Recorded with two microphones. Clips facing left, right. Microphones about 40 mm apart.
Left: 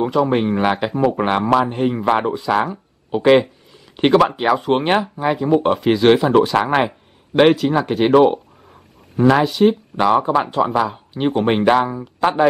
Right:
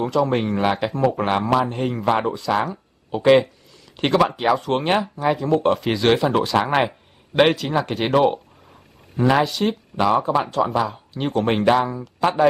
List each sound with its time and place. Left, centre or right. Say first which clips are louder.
0.0 s speech: left 3 dB; centre
10.0 s speech: left 3 dB; left